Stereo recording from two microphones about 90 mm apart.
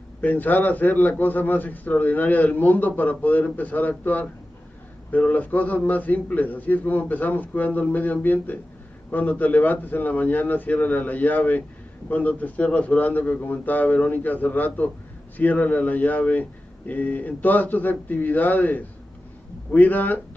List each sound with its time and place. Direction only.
0.2 s a man's voice: 20° left (ahead or behind)